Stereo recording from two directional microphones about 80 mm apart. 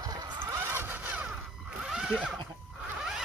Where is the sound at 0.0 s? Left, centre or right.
Right.